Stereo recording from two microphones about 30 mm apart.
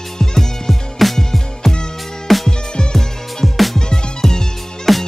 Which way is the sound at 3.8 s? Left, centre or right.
Left.